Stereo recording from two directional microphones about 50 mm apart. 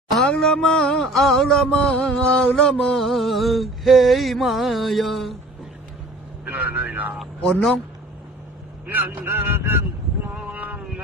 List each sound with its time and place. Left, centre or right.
0.2 s music: centre
2.4 s mantra: centre
2.8 s a sound: centre
6.4 s speech: right
8.8 s speech: right
10.3 s a sound: right